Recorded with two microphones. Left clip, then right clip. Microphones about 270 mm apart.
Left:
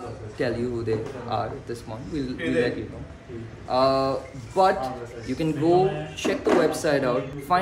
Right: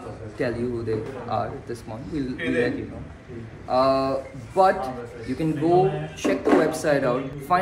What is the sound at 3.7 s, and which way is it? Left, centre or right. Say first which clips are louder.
Speech: right 1 dB; centre.